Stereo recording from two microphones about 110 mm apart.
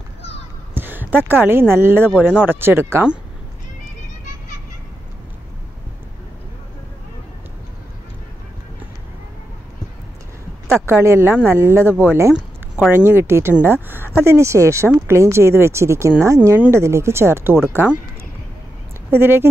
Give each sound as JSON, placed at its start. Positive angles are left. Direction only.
{"t": 0.7, "sound": "a sound", "side_deg": -15}
{"t": 1.2, "sound": "a woman's voice", "side_deg": -20}
{"t": 10.9, "sound": "a woman's voice", "side_deg": -20}
{"t": 19.0, "sound": "speech", "side_deg": -20}